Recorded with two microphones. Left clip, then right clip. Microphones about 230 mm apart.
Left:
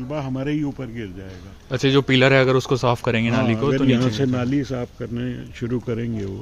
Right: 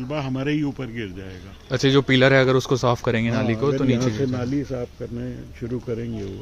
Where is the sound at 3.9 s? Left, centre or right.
Left.